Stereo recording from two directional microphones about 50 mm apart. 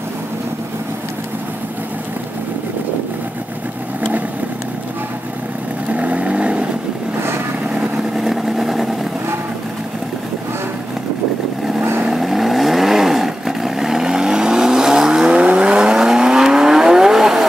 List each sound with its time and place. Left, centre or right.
5.9 s vehicle: right
8.2 s vehicle: centre
12.1 s vehicle: centre